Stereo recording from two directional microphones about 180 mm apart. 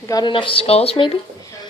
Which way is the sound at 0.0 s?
20° left (ahead or behind).